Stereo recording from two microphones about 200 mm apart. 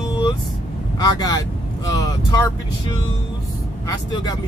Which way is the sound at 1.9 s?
20° left (ahead or behind).